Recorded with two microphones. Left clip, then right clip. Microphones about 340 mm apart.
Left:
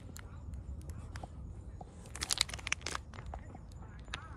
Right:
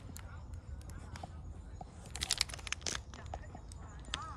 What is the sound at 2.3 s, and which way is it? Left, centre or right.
Typing, centre.